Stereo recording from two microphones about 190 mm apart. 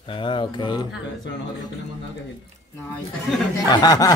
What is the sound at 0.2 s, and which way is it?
Speech, 25° left (ahead or behind).